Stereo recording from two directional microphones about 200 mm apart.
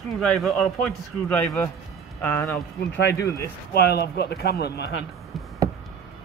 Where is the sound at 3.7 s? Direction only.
55° left (ahead or behind).